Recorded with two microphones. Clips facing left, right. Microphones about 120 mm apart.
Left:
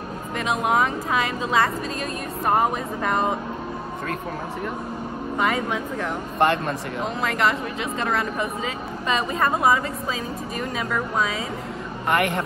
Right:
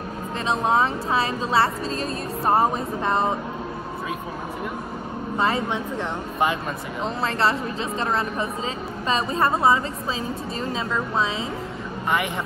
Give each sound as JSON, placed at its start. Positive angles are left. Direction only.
{"t": 0.7, "sound": "a woman's voice", "side_deg": -30}
{"t": 5.4, "sound": "speech", "side_deg": -30}
{"t": 6.4, "sound": "speech", "side_deg": 0}
{"t": 7.2, "sound": "a woman's voice", "side_deg": -30}
{"t": 12.1, "sound": "speech", "side_deg": 0}